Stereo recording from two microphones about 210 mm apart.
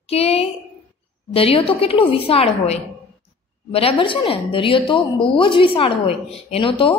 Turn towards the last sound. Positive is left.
turn(degrees=25)  # may be behind; listen again after turning